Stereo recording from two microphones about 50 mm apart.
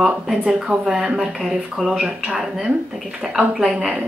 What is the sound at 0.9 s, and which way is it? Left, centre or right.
Speech, centre.